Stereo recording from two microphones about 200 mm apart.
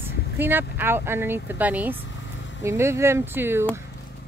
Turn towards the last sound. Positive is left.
turn(degrees=-10)  # may be behind; listen again after turning